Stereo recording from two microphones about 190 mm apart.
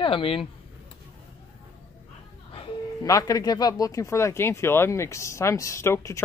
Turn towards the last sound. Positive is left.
turn(degrees=15)  # may be behind; listen again after turning